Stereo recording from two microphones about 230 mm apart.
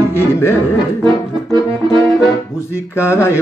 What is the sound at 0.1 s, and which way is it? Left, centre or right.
Speech, centre.